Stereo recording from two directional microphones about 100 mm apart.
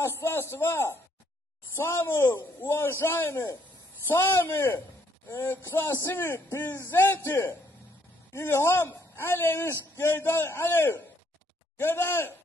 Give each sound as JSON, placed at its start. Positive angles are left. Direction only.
{"t": 0.0, "sound": "speech", "side_deg": 25}